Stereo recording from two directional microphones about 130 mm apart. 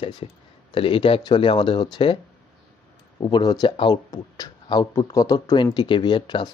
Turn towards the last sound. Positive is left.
turn(degrees=35)  # may be behind; listen again after turning